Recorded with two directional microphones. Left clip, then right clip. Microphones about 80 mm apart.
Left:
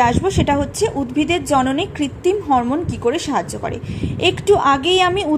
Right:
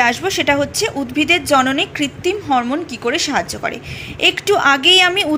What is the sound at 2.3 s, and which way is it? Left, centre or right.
A woman's voice, left.